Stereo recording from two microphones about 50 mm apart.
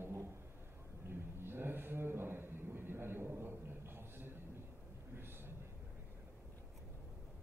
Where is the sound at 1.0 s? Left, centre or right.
Right.